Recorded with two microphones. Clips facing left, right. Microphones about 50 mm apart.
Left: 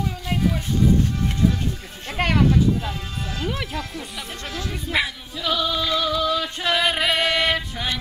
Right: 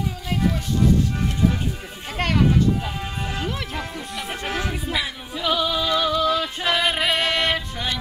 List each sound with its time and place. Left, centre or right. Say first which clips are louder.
2.1 s speech: left 1 dB; centre
4.5 s music: right 5 dB; right
5.4 s music: right 1 dB; centre